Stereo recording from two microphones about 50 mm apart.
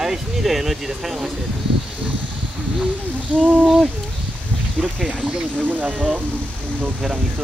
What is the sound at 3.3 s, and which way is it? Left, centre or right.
Speech, right.